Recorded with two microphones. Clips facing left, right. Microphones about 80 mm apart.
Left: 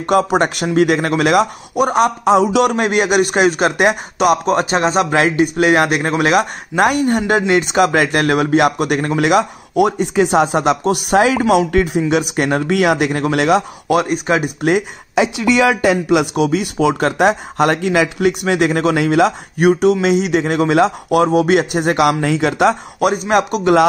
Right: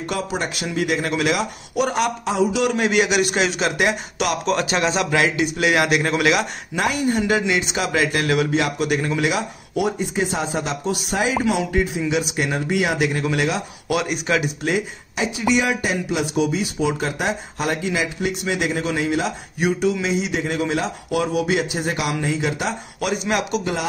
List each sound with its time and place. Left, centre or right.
0.0 s a man's voice: left
0.7 s a man's voice: left
1.9 s speech: left
2.2 s speech: left
2.7 s a man's voice: left
13.8 s speech: left
15.1 s speech: left
22.9 s a man's voice: left